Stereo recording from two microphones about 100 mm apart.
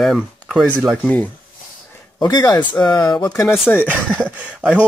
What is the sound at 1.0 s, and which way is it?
Speech, 15° left (ahead or behind).